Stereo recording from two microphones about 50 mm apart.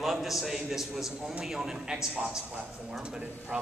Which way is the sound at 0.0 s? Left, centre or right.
Centre.